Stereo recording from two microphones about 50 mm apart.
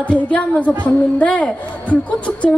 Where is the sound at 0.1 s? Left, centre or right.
Left.